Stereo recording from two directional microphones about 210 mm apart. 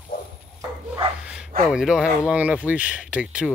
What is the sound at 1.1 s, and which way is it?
Bow-wow, 5° right (ahead or behind).